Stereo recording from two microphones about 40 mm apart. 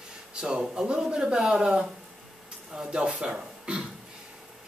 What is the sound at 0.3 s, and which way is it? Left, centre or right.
Speech, right.